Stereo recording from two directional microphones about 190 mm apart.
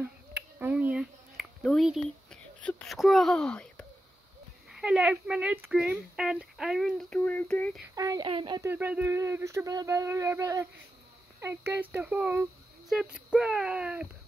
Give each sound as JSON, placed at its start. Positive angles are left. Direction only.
{"t": 0.6, "sound": "a sound", "side_deg": -10}
{"t": 2.6, "sound": "speech", "side_deg": 5}
{"t": 7.9, "sound": "a child's voice", "side_deg": -20}
{"t": 8.6, "sound": "speech", "side_deg": -10}